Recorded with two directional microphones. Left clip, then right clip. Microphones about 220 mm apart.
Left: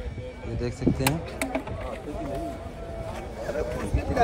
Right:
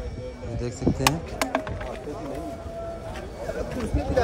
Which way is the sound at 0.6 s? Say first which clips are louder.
Even; 20° right (ahead or behind).